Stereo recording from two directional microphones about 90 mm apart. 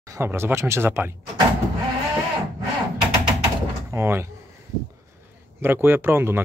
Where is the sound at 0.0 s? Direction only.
35° right (ahead or behind).